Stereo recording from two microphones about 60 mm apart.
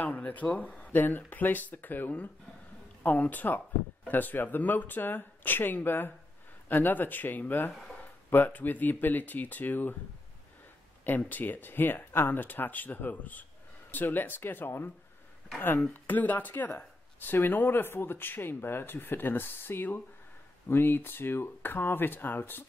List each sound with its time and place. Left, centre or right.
0.0 s speech: left
11.1 s speech: left
15.9 s speech: left